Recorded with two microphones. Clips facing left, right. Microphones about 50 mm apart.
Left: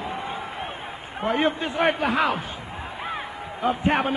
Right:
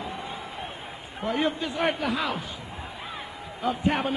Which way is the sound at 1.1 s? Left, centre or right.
Left.